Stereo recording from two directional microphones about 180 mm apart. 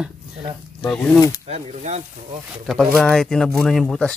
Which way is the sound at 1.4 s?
35° right (ahead or behind).